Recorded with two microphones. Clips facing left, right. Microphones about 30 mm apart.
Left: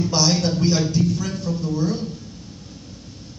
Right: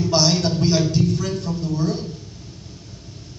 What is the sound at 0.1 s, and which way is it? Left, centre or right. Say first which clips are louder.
Music: right 3 dB; right.